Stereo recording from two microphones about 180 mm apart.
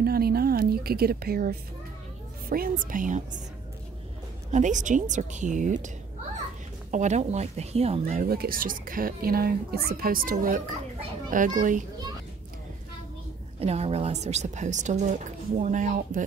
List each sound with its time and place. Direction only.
0.0 s a sound: 60° right (ahead or behind)
2.5 s a woman's voice: 50° right (ahead or behind)
4.5 s a woman's voice: 40° right (ahead or behind)
6.9 s a woman's voice: 40° right (ahead or behind)
8.0 s a woman's voice: 50° right (ahead or behind)
13.6 s a woman's voice: 35° right (ahead or behind)